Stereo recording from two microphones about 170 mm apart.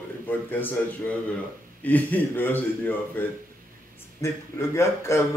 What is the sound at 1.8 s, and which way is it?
A man's voice, 10° left (ahead or behind).